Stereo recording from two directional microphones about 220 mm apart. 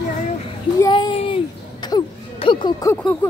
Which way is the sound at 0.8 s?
20° left (ahead or behind).